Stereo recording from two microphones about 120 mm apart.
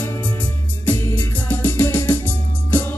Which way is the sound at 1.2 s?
15° left (ahead or behind).